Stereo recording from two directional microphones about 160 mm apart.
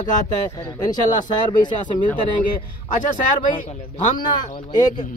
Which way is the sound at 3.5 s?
30° left (ahead or behind).